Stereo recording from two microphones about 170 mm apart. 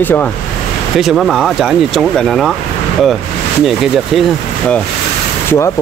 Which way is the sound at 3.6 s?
Centre (ahead or behind).